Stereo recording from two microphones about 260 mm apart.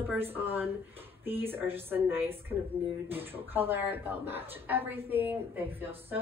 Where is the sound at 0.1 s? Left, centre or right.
Centre.